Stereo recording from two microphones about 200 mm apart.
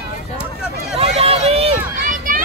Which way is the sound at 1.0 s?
30° right (ahead or behind).